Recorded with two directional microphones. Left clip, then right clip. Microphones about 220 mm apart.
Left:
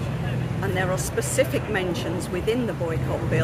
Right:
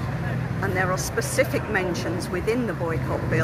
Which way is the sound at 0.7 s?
5° left (ahead or behind).